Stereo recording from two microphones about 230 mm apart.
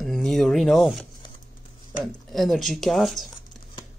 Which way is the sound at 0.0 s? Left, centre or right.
Centre.